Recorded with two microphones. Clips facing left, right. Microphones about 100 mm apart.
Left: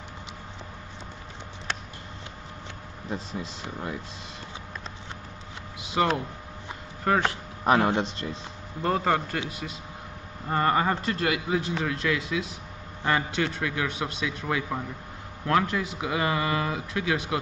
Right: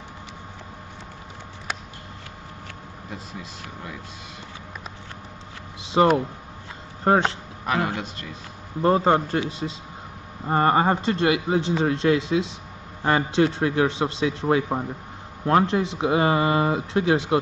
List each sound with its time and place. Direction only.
5.8 s a sound: 30° right (ahead or behind)
7.1 s speech: 25° right (ahead or behind)
7.6 s a man's voice: 30° left (ahead or behind)
8.8 s a man's voice: 25° right (ahead or behind)